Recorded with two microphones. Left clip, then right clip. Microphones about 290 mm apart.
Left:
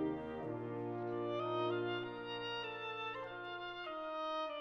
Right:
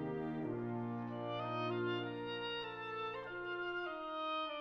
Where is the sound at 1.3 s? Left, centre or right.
Centre.